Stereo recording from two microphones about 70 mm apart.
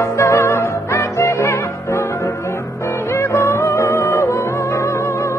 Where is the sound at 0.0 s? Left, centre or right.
Left.